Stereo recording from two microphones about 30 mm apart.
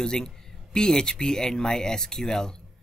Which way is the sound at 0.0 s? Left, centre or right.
Left.